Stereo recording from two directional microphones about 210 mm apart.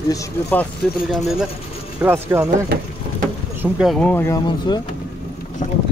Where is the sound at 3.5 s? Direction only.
5° right (ahead or behind); by 4.8 s 20° left (ahead or behind).